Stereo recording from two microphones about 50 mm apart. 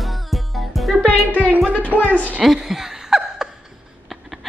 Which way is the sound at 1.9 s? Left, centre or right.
Right.